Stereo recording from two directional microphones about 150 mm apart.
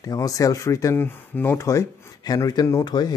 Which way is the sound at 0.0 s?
25° left (ahead or behind).